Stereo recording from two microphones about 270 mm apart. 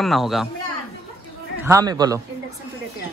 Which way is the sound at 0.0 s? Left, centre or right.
Centre.